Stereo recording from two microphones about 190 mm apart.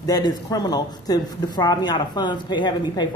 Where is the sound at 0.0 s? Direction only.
20° left (ahead or behind).